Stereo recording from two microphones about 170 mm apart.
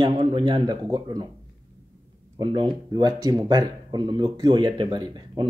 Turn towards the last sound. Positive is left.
turn(degrees=-25)  # may be behind; listen again after turning